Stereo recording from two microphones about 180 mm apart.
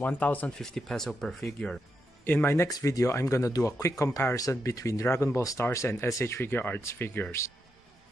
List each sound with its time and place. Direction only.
0.0 s speech: 10° left (ahead or behind)